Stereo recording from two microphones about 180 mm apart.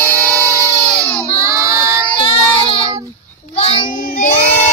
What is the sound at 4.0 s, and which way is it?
Child singing, 50° left (ahead or behind).